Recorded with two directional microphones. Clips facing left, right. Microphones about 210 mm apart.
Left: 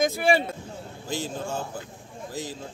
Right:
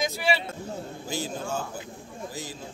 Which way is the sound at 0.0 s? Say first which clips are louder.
Left 5 dB; 50° left (ahead or behind).